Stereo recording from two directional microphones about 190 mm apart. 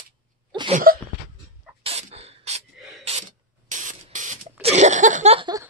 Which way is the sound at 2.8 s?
Centre (ahead or behind).